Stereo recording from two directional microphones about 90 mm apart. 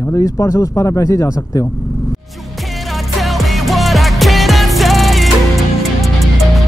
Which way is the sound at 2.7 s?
Centre (ahead or behind).